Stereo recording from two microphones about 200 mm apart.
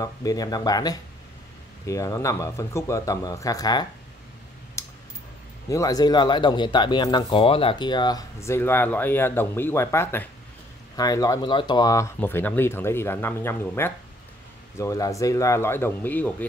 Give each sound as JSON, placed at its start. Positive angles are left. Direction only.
{"t": 0.0, "sound": "speech", "side_deg": 20}
{"t": 4.8, "sound": "a sound", "side_deg": 15}
{"t": 5.7, "sound": "speech", "side_deg": 15}